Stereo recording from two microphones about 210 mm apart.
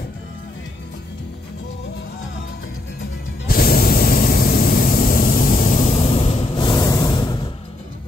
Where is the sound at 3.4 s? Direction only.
45° left (ahead or behind); by 7.3 s 20° left (ahead or behind).